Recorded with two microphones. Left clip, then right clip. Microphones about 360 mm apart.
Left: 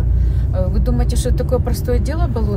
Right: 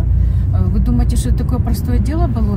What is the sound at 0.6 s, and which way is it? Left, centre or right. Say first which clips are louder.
Speech: left 1 dB; centre.